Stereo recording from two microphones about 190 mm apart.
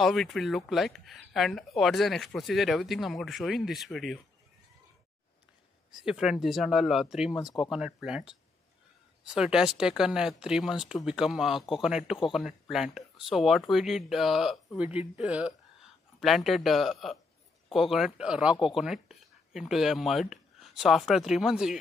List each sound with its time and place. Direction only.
0.0 s speech: centre (ahead or behind)
5.9 s speech: 5° right (ahead or behind)